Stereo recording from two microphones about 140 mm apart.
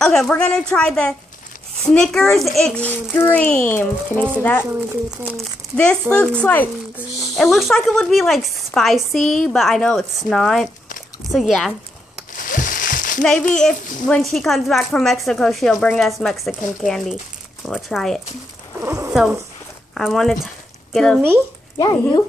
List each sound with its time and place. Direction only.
0.0 s a woman's voice: 5° left (ahead or behind)
5.1 s speech: 10° right (ahead or behind)
5.4 s speech: 10° left (ahead or behind)
7.3 s a woman's voice: centre (ahead or behind)
12.4 s a sound: 75° left (ahead or behind)
13.2 s a woman's voice: 5° left (ahead or behind)
18.8 s speech: 20° right (ahead or behind)
19.9 s a woman's voice: centre (ahead or behind)
21.7 s speech: 30° left (ahead or behind)